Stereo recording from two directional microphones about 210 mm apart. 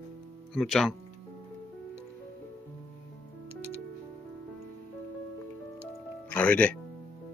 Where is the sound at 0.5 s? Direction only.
Centre (ahead or behind).